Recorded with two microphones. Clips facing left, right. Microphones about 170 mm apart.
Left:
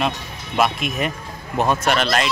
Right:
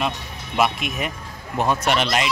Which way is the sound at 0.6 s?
10° right (ahead or behind).